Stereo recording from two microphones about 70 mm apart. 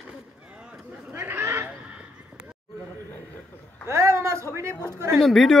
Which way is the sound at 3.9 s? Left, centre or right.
Right.